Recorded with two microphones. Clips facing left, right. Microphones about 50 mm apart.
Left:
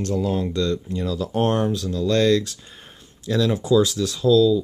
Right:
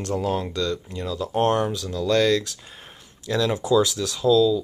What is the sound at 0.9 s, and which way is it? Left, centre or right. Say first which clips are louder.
Speech: left 2 dB; centre.